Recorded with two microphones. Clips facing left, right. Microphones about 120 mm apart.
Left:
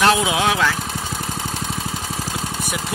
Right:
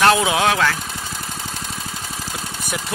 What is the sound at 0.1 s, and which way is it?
Speech, 10° left (ahead or behind).